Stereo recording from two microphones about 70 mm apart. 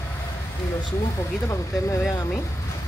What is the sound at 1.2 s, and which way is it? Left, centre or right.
Speech, left.